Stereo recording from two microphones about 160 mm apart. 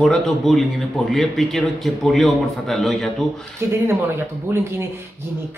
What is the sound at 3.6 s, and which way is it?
Speech, 15° right (ahead or behind).